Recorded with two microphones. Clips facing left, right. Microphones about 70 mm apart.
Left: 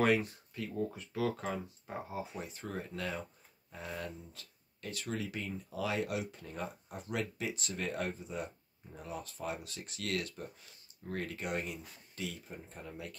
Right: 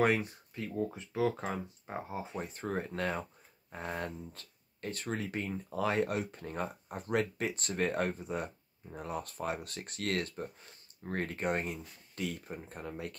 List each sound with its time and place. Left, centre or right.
0.0 s speech: right
2.3 s speech: right